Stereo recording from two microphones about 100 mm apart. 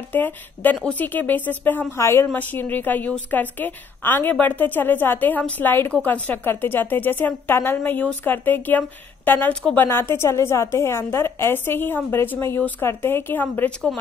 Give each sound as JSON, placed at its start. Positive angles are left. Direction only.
{"t": 0.1, "sound": "a woman's voice", "side_deg": 15}
{"t": 9.8, "sound": "a woman's voice", "side_deg": 25}